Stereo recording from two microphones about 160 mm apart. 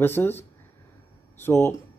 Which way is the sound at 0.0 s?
15° left (ahead or behind).